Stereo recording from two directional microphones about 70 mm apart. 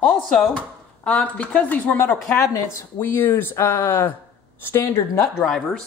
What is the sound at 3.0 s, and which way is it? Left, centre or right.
Speech, left.